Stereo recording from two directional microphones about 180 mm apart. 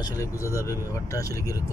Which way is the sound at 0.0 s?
15° left (ahead or behind).